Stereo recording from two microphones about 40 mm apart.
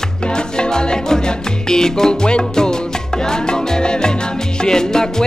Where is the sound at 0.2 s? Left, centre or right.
Left.